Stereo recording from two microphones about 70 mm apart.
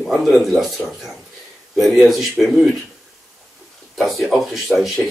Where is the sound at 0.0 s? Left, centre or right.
Centre.